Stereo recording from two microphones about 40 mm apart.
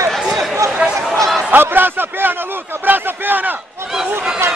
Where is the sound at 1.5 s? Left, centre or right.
Right.